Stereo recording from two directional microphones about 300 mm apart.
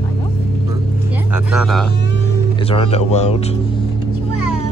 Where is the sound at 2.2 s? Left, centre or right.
Centre.